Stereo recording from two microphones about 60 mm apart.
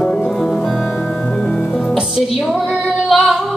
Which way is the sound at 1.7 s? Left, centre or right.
Centre.